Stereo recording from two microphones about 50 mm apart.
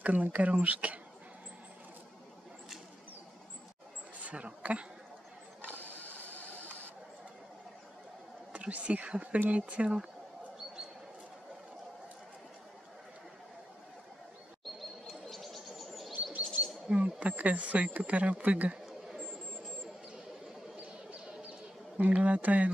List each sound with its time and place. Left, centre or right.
0.0 s speech: right
4.2 s speech: right
5.8 s a sound: right
8.5 s speech: right
14.6 s chirp: centre
16.6 s bird: right
16.9 s speech: right
20.8 s a sound: right
21.9 s speech: right